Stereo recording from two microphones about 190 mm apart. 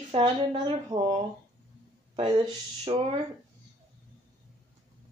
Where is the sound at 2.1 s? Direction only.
25° right (ahead or behind).